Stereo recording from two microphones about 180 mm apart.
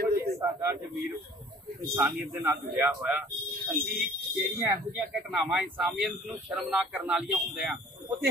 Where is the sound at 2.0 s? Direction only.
10° right (ahead or behind).